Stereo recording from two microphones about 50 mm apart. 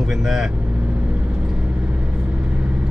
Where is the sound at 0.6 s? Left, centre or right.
Right.